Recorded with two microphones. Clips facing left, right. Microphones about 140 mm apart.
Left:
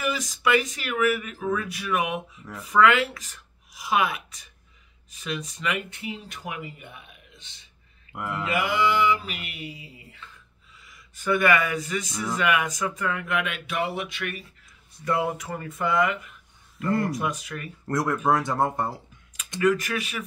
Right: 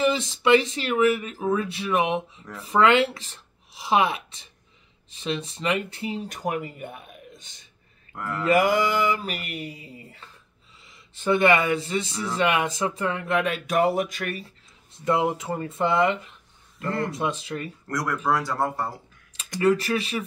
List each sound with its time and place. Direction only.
0.0 s speech: 25° right (ahead or behind); by 7.5 s 45° right (ahead or behind)
8.1 s speech: 10° left (ahead or behind)
8.5 s a sound: 40° right (ahead or behind)
10.8 s speech: 25° right (ahead or behind)
14.9 s speech: 20° right (ahead or behind)
17.8 s speech: 25° left (ahead or behind)
19.6 s speech: 30° right (ahead or behind)